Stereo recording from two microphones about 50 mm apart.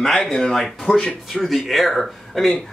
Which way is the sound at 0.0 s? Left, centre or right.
Centre.